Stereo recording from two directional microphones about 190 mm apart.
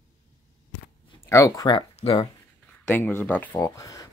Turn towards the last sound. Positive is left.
turn(degrees=15)  # may be behind; listen again after turning